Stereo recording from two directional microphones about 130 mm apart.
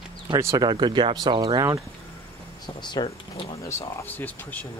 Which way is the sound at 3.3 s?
45° left (ahead or behind).